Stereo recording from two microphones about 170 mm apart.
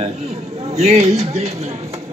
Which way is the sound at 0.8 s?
40° right (ahead or behind).